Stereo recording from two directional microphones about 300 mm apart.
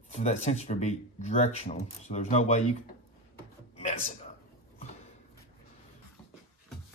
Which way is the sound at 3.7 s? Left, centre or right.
Left.